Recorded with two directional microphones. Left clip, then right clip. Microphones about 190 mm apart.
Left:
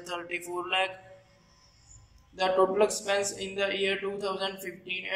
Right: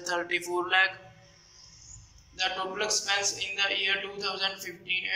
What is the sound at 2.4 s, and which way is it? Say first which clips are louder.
A man's voice: left 6 dB; 30° left (ahead or behind).